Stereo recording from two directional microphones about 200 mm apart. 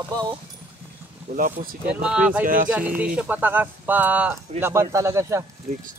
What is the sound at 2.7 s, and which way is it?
Speech, 10° right (ahead or behind).